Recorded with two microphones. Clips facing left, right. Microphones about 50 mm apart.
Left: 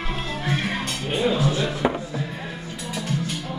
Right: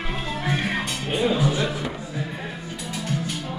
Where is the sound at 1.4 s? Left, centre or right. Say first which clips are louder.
Even; centre.